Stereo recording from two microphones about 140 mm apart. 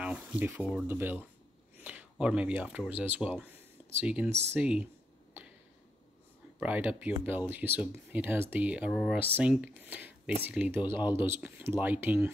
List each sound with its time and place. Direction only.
0.0 s speech: 10° right (ahead or behind)
4.3 s speech: 50° right (ahead or behind)
4.6 s speech: 10° right (ahead or behind)
6.6 s speech: 10° right (ahead or behind)